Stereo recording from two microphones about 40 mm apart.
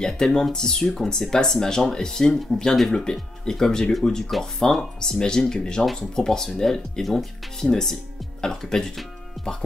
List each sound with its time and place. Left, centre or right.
0.0 s speech: centre
8.9 s music: centre